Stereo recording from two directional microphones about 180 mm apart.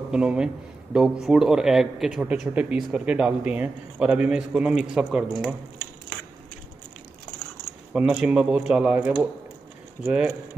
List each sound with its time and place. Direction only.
0.1 s a man's voice: 5° right (ahead or behind)
7.9 s a man's voice: 5° right (ahead or behind)